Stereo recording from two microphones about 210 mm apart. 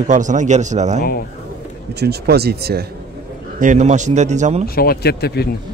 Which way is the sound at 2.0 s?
50° right (ahead or behind).